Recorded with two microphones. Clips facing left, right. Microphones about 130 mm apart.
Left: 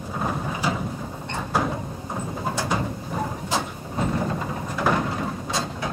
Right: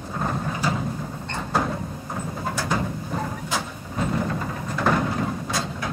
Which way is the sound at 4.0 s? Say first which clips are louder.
Even; 20° left (ahead or behind).